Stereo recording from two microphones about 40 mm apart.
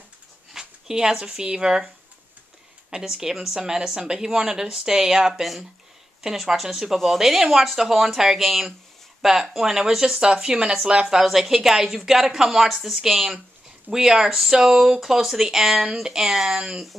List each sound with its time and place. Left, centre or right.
0.5 s speech: centre
3.0 s a woman's voice: centre
5.4 s a woman's voice: centre